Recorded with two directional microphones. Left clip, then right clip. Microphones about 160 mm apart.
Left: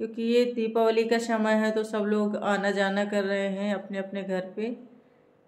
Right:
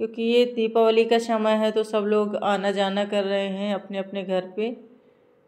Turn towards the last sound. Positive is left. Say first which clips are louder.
# right 5 dB
turn(degrees=-15)  # may be behind; listen again after turning